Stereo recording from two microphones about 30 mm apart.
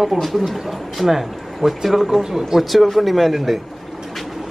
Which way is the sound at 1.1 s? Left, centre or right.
Centre.